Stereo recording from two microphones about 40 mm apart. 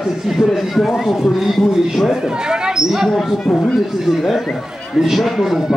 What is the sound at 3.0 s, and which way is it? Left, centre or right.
Speech, centre.